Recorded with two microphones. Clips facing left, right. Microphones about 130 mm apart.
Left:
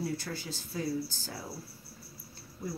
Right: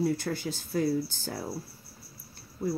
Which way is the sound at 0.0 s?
55° right (ahead or behind).